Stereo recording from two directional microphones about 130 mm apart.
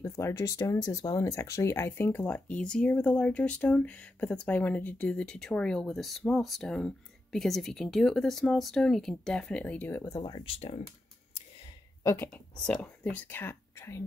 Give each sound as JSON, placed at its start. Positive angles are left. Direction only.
{"t": 0.0, "sound": "speech", "side_deg": 20}
{"t": 10.3, "sound": "speech", "side_deg": 45}
{"t": 12.0, "sound": "speech", "side_deg": 25}
{"t": 12.3, "sound": "speech", "side_deg": 5}